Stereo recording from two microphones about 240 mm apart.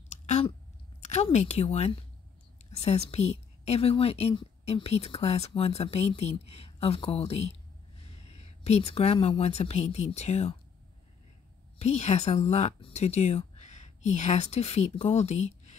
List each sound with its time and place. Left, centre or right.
0.1 s a sound: left
1.0 s a woman's voice: left
11.8 s a woman's voice: left